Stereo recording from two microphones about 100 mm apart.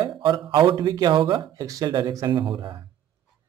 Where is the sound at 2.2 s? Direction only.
50° right (ahead or behind).